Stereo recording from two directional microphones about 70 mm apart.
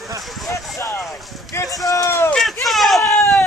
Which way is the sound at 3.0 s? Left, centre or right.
Left.